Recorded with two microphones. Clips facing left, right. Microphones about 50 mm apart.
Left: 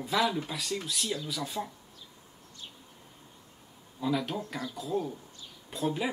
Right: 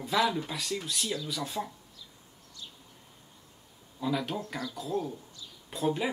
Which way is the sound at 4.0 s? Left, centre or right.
Centre.